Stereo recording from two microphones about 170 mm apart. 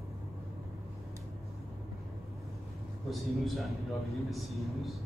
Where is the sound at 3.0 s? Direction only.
Centre (ahead or behind).